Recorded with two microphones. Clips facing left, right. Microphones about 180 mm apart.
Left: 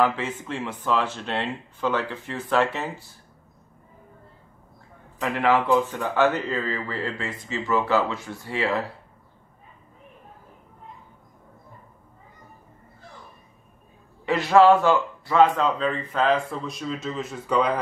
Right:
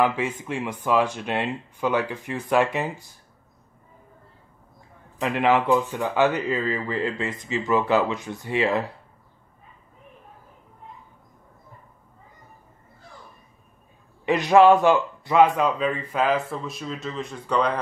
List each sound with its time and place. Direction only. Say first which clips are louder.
0.0 s speech: right 1 dB; 15° right (ahead or behind)
5.2 s speech: right 1 dB; 20° right (ahead or behind)
14.2 s speech: right 1 dB; 15° right (ahead or behind); by 17.7 s 5° left (ahead or behind)